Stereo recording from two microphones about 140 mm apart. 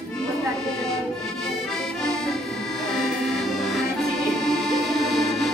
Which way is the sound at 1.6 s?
5° left (ahead or behind).